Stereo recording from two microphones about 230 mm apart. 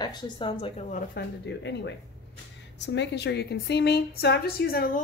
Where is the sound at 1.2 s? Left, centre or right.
Left.